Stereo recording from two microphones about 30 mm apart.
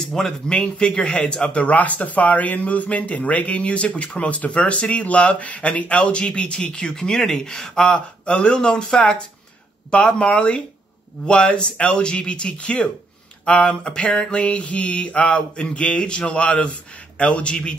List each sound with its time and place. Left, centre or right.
0.0 s speech: centre
0.6 s mantra: left
1.5 s speech: left
6.2 s mantra: left
7.0 s speech: centre
8.3 s mantra: left
9.8 s mantra: left
11.2 s speech: left
11.8 s mantra: left
13.7 s speech: left
14.3 s mantra: left
15.5 s mantra: left